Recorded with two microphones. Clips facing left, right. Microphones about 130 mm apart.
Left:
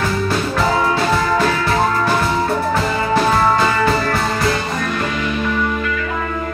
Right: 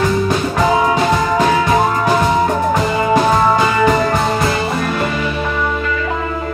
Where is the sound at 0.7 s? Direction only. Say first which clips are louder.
Right 4 dB; 15° right (ahead or behind).